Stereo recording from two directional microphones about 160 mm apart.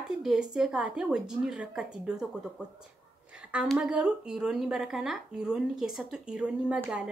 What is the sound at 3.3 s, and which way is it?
A woman's voice, 5° right (ahead or behind).